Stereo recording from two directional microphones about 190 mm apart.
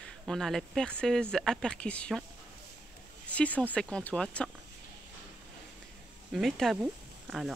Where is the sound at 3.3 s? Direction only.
5° left (ahead or behind).